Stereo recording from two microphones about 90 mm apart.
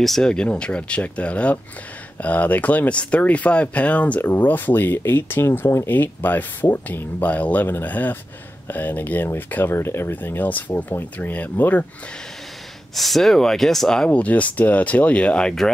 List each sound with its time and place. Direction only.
0.0 s speech: 5° left (ahead or behind)
12.9 s speech: centre (ahead or behind)